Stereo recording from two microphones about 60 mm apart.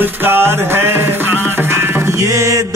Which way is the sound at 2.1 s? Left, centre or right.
Right.